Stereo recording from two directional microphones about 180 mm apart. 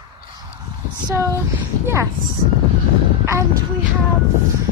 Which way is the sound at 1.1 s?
15° right (ahead or behind).